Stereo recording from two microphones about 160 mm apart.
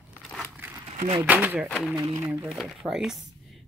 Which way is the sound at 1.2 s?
10° right (ahead or behind).